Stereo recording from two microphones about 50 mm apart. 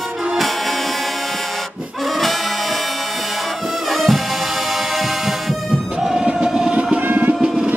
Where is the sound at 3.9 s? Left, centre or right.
Centre.